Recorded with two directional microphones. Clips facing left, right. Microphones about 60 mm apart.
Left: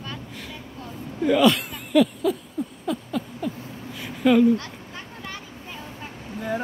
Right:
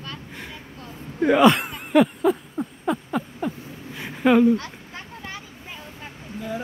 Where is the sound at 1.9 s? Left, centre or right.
Right.